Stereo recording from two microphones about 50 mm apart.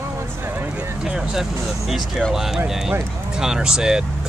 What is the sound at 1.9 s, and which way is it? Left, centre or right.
Speech, centre.